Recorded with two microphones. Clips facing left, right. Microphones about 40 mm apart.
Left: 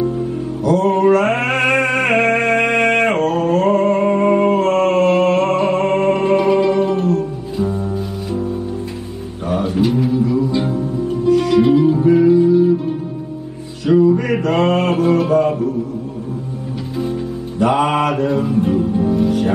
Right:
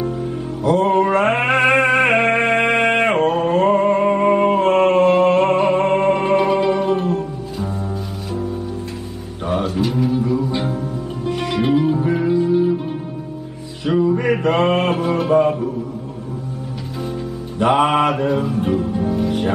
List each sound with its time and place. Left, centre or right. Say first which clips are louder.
0.7 s music: left 2 dB; right
6.9 s music: left 2 dB; right
9.8 s music: left 3 dB; centre
11.2 s music: left 7 dB; right
15.0 s music: left 1 dB; centre
17.6 s music: even; right
19.0 s music: left 4 dB; centre